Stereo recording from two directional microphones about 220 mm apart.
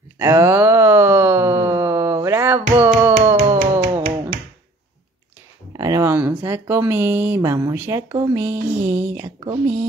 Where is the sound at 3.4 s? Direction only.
30° right (ahead or behind).